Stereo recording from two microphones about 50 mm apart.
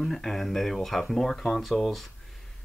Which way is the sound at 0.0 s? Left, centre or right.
Centre.